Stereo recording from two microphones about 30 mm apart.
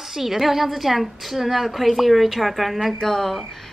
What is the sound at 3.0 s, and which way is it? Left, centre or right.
Speech, centre.